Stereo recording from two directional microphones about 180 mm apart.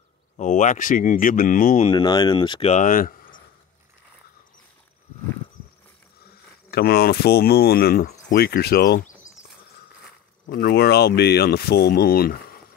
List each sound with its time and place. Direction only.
0.4 s speech: 40° left (ahead or behind)
1.9 s speech: 25° left (ahead or behind)
2.7 s speech: 45° left (ahead or behind)
6.7 s speech: 60° left (ahead or behind)
10.4 s speech: 65° left (ahead or behind)